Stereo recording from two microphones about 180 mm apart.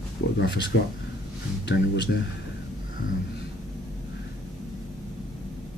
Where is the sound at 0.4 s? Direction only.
75° left (ahead or behind).